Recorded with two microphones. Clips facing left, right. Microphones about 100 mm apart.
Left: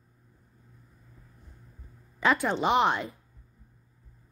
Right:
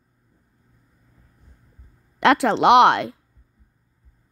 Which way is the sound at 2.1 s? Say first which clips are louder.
Right 8 dB; 90° right.